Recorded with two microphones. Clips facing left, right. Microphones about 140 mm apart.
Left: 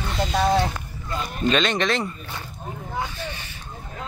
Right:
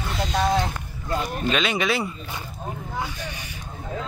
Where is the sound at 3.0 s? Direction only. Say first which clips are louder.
Left 3 dB; 15° right (ahead or behind).